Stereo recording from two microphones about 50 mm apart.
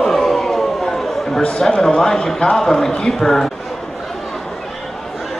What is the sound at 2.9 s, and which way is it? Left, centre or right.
Speech, centre.